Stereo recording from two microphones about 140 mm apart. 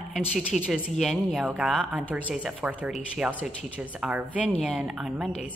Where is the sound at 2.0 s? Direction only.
10° right (ahead or behind).